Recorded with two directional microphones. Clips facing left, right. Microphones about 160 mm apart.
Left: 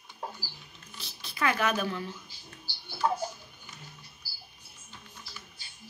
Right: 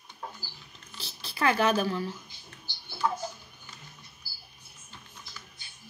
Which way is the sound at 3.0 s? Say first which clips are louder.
Left 1 dB; 30° left (ahead or behind).